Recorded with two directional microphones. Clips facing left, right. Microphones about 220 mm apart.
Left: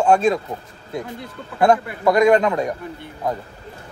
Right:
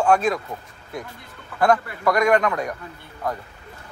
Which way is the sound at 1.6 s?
25° left (ahead or behind).